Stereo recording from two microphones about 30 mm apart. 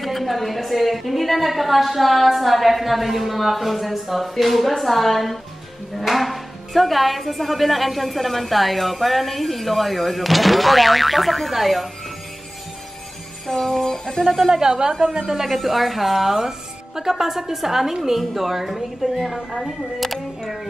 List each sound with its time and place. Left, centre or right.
0.0 s speech: centre
13.5 s music: centre
14.2 s speech: centre
14.5 s a woman's voice: right
15.4 s a woman's voice: centre
19.3 s a woman's voice: centre
20.0 s speech: centre